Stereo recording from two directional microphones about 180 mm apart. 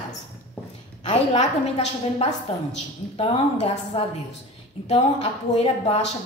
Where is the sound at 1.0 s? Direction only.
35° left (ahead or behind).